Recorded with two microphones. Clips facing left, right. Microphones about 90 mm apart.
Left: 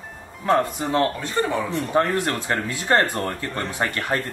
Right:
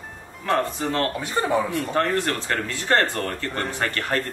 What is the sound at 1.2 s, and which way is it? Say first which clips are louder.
Speech: right 1 dB; 10° right (ahead or behind).